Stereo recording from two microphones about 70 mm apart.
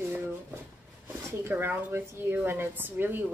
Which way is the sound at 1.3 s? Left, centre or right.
Right.